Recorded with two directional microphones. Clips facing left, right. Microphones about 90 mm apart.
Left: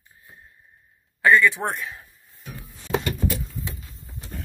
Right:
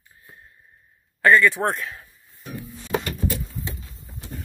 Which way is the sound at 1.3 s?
Centre (ahead or behind).